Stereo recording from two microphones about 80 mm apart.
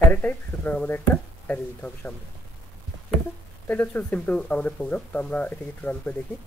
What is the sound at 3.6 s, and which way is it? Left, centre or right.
Speech, left.